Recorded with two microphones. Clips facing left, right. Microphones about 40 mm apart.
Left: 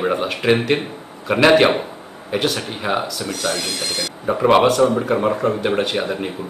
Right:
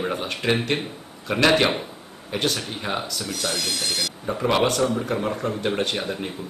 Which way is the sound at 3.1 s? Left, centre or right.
Centre.